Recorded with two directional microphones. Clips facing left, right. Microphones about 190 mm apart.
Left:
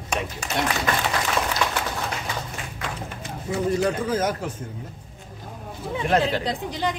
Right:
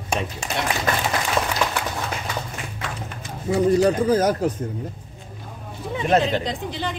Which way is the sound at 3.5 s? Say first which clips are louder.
Right 5 dB; 35° right (ahead or behind).